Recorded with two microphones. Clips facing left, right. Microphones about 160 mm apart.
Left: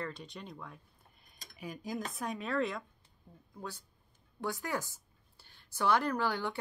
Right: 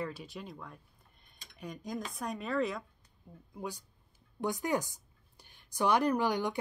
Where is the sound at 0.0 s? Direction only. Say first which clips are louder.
Right 2 dB; 5° right (ahead or behind).